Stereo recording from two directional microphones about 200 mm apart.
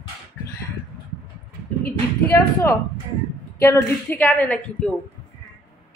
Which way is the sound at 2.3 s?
15° left (ahead or behind).